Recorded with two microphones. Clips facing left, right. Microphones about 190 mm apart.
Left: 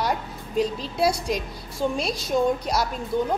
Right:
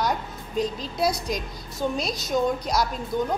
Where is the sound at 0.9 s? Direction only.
10° left (ahead or behind).